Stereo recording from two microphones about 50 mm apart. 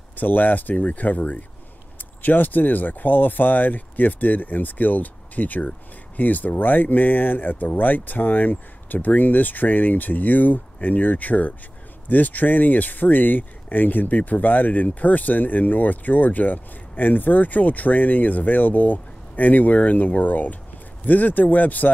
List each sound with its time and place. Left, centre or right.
0.1 s speech: left